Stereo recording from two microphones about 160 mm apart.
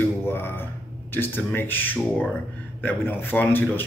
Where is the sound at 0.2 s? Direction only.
15° left (ahead or behind).